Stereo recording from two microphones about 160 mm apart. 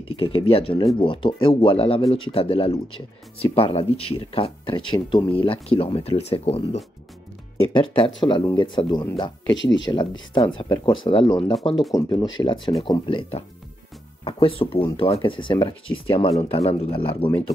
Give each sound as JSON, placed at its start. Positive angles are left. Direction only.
{"t": 0.2, "sound": "speech", "side_deg": 35}
{"t": 14.2, "sound": "speech", "side_deg": 35}